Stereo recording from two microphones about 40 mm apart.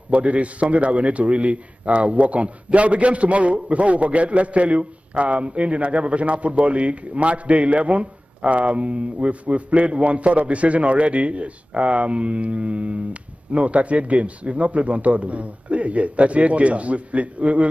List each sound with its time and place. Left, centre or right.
0.1 s a man's voice: right